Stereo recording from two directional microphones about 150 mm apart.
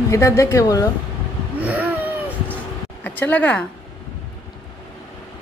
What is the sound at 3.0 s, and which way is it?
Speech, 10° left (ahead or behind).